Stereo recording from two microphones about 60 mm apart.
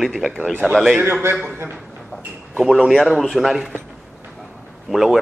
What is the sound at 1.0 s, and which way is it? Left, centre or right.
Speech, right.